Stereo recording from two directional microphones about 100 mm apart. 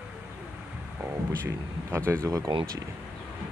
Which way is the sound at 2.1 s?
30° right (ahead or behind).